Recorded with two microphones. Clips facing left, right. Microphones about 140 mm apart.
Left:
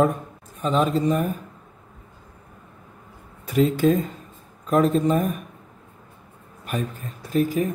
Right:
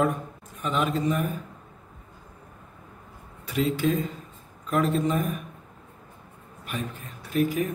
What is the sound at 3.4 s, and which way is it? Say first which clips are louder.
Speech: left 6 dB; 45° left (ahead or behind).